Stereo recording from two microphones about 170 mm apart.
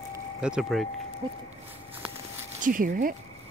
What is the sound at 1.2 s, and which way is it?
Speech, 30° right (ahead or behind).